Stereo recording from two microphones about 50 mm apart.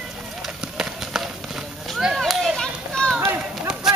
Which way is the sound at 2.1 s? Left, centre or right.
Centre.